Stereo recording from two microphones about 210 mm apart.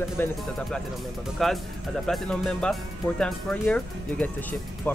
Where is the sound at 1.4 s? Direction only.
Centre (ahead or behind).